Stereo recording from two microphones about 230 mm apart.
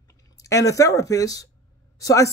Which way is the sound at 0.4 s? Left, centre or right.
Centre.